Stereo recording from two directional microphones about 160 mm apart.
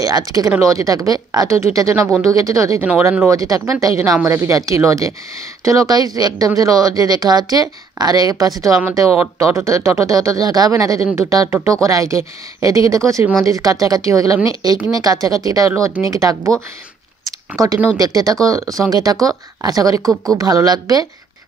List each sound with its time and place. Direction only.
0.0 s speech: 25° right (ahead or behind)
17.9 s speech: 25° right (ahead or behind)